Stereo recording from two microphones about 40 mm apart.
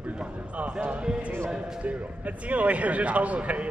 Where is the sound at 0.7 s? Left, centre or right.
Right.